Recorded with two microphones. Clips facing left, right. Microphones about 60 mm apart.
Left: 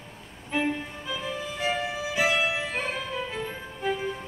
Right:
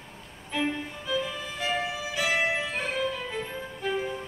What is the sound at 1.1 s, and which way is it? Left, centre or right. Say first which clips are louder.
Music: right 2 dB; left.